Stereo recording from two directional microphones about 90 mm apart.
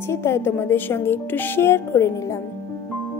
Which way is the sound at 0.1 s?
30° left (ahead or behind).